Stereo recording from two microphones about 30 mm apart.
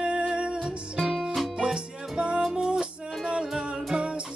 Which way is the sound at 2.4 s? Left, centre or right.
Right.